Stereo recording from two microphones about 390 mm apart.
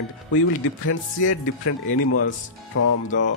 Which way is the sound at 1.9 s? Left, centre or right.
Left.